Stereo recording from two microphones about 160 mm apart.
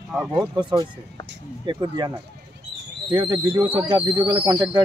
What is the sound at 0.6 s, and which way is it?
Speech, 30° right (ahead or behind).